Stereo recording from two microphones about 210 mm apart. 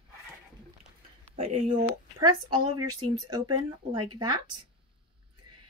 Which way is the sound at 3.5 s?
90° right.